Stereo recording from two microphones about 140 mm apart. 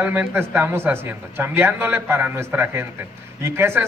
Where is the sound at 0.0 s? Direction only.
15° right (ahead or behind).